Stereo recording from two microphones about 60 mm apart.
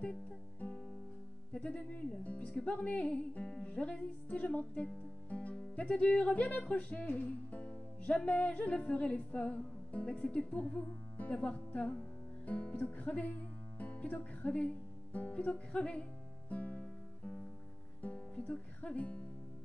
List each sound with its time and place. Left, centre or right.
0.0 s music: left
1.5 s speech: centre
12.4 s music: left
18.0 s speech: left